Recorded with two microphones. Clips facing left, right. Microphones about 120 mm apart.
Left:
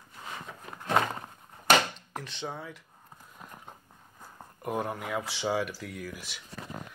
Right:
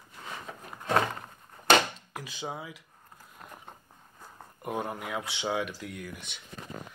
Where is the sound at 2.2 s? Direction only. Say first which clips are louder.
Even; 5° right (ahead or behind).